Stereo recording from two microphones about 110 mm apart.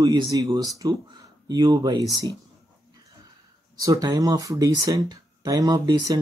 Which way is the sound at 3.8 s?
35° right (ahead or behind).